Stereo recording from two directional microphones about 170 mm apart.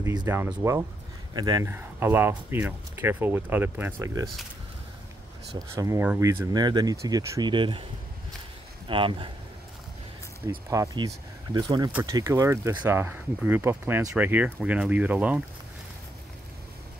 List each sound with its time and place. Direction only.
0.0 s speech: 25° right (ahead or behind)
0.3 s speech: 10° right (ahead or behind)
5.8 s speech: 15° right (ahead or behind)
8.8 s speech: 30° right (ahead or behind)
10.7 s speech: 20° right (ahead or behind)